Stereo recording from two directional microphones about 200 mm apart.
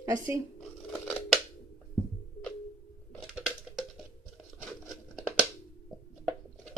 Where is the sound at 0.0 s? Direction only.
15° right (ahead or behind).